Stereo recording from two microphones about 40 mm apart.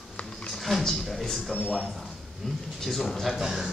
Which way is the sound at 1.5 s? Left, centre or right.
Left.